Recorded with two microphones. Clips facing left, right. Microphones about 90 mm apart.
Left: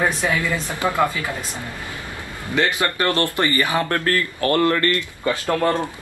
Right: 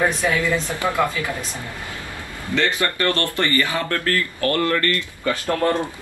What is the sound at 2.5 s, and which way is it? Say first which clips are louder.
Speech: left 1 dB; 20° left (ahead or behind).